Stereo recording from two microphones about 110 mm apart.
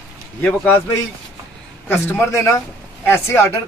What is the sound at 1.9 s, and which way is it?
Speech, 25° left (ahead or behind).